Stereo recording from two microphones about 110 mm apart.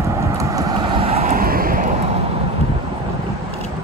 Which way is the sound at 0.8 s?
55° right (ahead or behind).